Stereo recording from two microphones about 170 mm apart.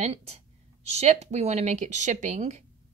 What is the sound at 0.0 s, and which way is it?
Speech, 35° right (ahead or behind).